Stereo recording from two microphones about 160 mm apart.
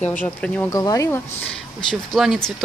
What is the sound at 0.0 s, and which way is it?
Speech, 10° left (ahead or behind).